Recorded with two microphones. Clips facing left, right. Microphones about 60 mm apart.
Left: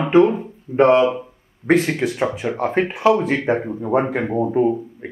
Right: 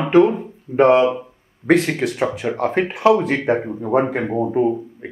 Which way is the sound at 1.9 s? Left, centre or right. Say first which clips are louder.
Even; centre.